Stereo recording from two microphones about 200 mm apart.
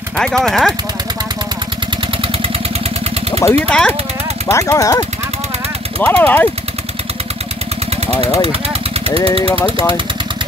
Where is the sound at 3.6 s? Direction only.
5° left (ahead or behind).